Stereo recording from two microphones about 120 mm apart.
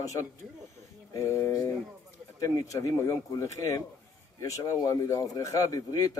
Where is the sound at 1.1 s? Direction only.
25° left (ahead or behind).